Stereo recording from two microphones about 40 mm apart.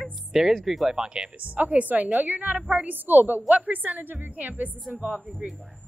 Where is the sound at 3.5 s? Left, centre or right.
Right.